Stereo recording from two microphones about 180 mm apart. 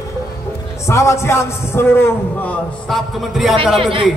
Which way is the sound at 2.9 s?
Centre (ahead or behind).